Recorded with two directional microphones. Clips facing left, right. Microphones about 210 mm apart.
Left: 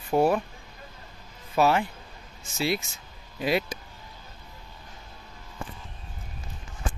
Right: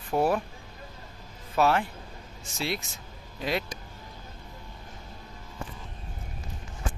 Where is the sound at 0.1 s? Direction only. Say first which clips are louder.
Left 3 dB; 5° left (ahead or behind).